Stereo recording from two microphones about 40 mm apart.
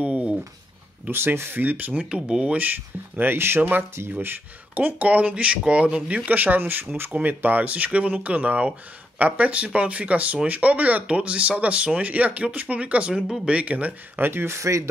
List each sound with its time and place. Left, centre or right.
0.0 s dishes: right
1.1 s speech: right
1.6 s speech: right
2.0 s speech: right
2.5 s speech: right
4.7 s speech: right
5.3 s speech: right
6.6 s speech: right
7.2 s speech: right
14.2 s speech: right